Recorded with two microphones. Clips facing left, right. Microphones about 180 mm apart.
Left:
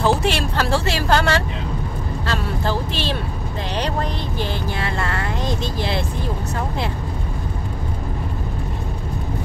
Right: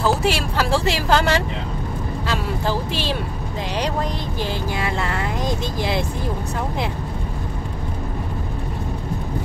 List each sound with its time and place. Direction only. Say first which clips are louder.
0.1 s speech: left 1 dB; 5° right (ahead or behind)
4.4 s speech: right 1 dB; 15° right (ahead or behind)